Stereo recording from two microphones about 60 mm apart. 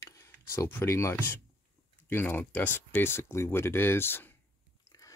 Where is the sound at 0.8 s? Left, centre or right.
Left.